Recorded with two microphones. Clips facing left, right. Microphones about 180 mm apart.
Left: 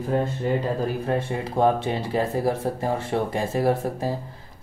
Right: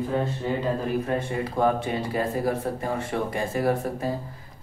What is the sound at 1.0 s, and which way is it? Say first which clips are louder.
Speech: left 1 dB; 25° left (ahead or behind).